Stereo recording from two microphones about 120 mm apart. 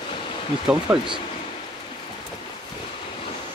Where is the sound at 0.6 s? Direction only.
5° right (ahead or behind).